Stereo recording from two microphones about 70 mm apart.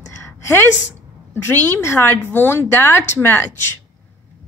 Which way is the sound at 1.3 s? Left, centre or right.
Left.